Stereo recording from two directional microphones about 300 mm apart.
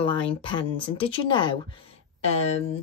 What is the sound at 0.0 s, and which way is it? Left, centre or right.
Speech, centre.